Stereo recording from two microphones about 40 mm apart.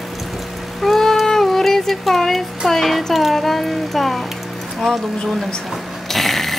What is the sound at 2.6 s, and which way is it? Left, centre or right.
A child's voice, centre.